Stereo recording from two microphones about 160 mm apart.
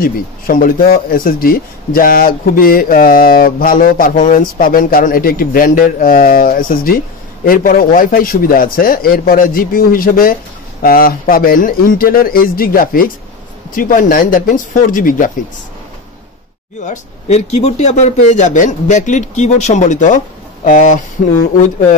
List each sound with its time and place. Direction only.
0.0 s speech: 60° left (ahead or behind)
16.8 s a man's voice: 45° left (ahead or behind)